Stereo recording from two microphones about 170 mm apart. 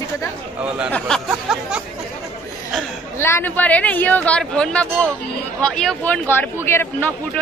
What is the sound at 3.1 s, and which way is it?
Speech, 15° left (ahead or behind).